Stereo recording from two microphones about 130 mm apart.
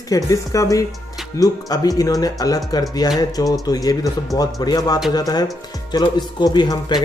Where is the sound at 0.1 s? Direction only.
25° left (ahead or behind).